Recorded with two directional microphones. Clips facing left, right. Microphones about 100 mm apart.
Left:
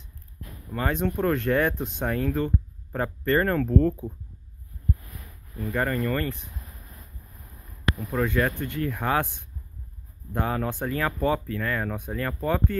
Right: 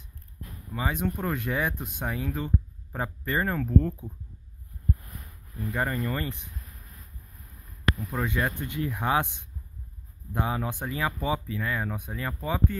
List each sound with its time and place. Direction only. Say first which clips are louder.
0.7 s speech: left 4 dB; 10° right (ahead or behind)
5.7 s speech: left 3 dB; 15° right (ahead or behind)
7.9 s a sound: even; 25° left (ahead or behind)
8.2 s speech: left 4 dB; 15° right (ahead or behind)